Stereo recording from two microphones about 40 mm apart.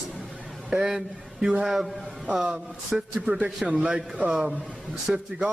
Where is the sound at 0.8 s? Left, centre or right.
Centre.